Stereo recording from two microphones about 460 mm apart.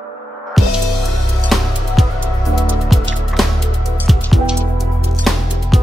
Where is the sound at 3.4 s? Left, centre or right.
Centre.